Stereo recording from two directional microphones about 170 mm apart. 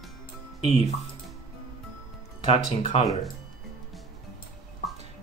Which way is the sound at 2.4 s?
35° left (ahead or behind).